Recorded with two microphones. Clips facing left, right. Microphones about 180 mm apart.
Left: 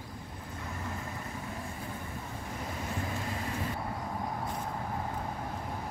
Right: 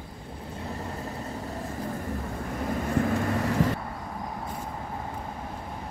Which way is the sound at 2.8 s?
60° right (ahead or behind).